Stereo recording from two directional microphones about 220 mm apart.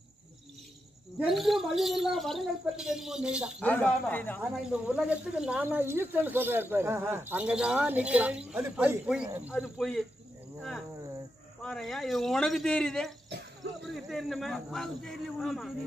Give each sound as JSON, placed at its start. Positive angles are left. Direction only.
{"t": 1.2, "sound": "speech", "side_deg": 0}
{"t": 3.6, "sound": "speech", "side_deg": 10}
{"t": 4.4, "sound": "speech", "side_deg": -5}
{"t": 11.6, "sound": "speech", "side_deg": 0}
{"t": 13.3, "sound": "a sound", "side_deg": -50}
{"t": 13.9, "sound": "speech", "side_deg": 0}